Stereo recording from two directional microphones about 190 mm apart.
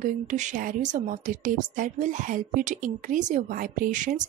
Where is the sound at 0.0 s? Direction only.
40° right (ahead or behind).